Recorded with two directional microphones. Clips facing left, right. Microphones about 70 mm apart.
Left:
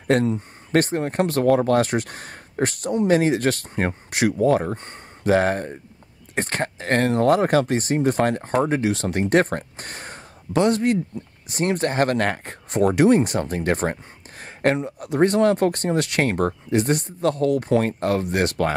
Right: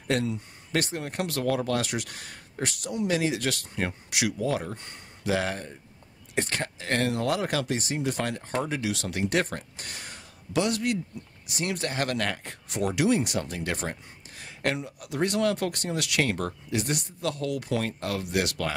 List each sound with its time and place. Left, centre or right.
0.1 s speech: left